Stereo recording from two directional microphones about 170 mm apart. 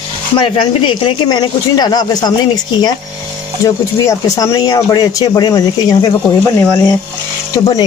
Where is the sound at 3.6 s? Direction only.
20° left (ahead or behind).